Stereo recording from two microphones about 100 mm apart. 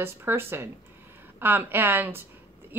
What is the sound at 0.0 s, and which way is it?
Speech, 25° right (ahead or behind).